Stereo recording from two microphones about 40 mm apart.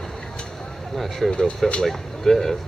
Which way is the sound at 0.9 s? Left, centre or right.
Centre.